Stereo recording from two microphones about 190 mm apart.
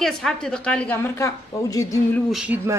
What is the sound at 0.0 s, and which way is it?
A woman's voice, centre (ahead or behind).